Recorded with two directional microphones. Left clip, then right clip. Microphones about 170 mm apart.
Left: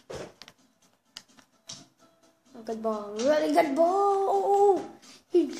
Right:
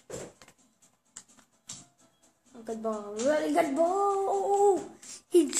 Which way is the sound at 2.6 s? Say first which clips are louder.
Left 3 dB; 10° left (ahead or behind).